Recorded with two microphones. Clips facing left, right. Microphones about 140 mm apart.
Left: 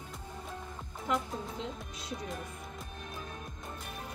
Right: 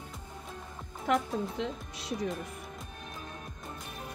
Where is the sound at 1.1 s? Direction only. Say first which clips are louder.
Right 4 dB; 70° right (ahead or behind).